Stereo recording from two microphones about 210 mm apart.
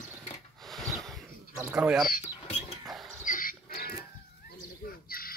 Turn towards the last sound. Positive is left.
turn(degrees=45)  # may be behind; listen again after turning